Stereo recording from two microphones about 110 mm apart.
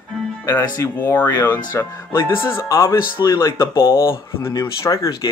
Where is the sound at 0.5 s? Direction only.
20° left (ahead or behind).